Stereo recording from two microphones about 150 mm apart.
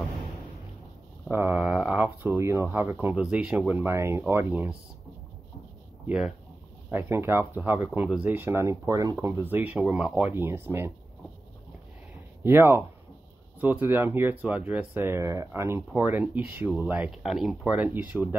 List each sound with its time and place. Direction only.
1.3 s speech: 10° right (ahead or behind)
6.0 s speech: 5° right (ahead or behind)
6.9 s speech: 15° right (ahead or behind)
12.4 s speech: 15° right (ahead or behind)